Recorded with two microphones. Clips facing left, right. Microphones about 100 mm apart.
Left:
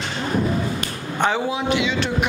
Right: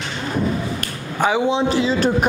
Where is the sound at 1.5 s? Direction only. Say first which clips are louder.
Right 4 dB; 35° right (ahead or behind).